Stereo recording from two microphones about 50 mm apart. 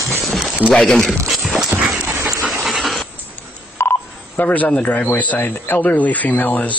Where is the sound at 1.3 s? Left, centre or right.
Centre.